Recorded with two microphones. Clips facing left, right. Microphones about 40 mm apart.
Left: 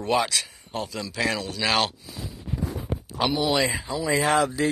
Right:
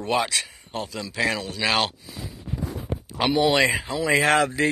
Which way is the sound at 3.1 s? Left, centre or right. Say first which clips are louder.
Right 3 dB; right.